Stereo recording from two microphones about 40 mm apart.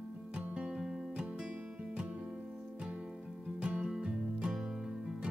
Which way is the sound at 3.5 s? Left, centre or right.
Right.